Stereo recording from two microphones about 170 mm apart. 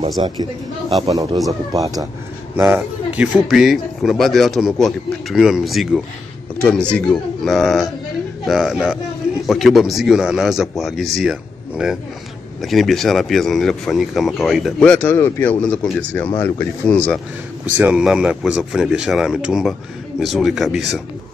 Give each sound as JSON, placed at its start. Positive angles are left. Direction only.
{"t": 0.2, "sound": "speech", "side_deg": -25}
{"t": 17.7, "sound": "speech", "side_deg": -10}